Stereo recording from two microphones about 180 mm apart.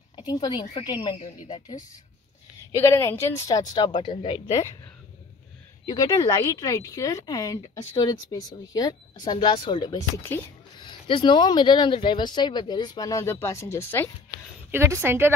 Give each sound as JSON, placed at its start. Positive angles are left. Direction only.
{"t": 0.1, "sound": "a woman's voice", "side_deg": 25}
{"t": 5.9, "sound": "speech", "side_deg": 20}
{"t": 10.1, "sound": "a woman's voice", "side_deg": 10}
{"t": 10.8, "sound": "speech", "side_deg": 25}
{"t": 14.7, "sound": "a woman's voice", "side_deg": -15}